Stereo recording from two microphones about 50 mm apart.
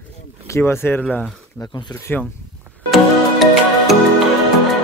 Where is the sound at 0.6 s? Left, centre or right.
Left.